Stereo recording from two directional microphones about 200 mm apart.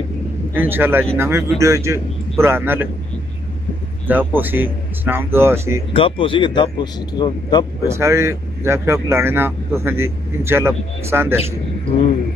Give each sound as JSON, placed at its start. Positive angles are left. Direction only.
{"t": 0.6, "sound": "speech", "side_deg": -10}
{"t": 4.1, "sound": "speech", "side_deg": -10}
{"t": 5.9, "sound": "speech", "side_deg": 25}
{"t": 8.0, "sound": "speech", "side_deg": -15}